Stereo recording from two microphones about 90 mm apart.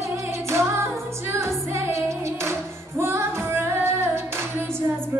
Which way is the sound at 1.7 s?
30° right (ahead or behind).